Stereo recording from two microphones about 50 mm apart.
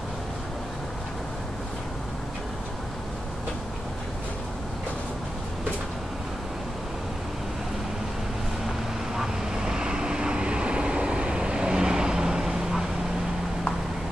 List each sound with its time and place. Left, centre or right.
9.1 s vehicle: centre